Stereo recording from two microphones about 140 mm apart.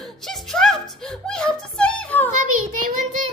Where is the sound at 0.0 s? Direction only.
5° left (ahead or behind).